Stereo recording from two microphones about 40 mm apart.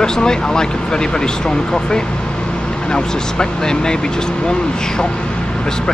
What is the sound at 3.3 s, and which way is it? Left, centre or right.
Speech, centre.